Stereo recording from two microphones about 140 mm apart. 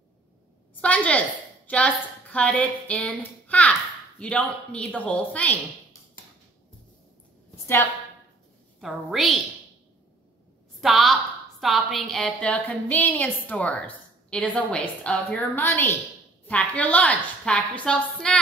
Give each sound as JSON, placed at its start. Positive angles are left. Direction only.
{"t": 0.7, "sound": "a woman's voice", "side_deg": 10}
{"t": 7.6, "sound": "a woman's voice", "side_deg": 15}
{"t": 8.8, "sound": "a woman's voice", "side_deg": 0}
{"t": 10.8, "sound": "a woman's voice", "side_deg": 0}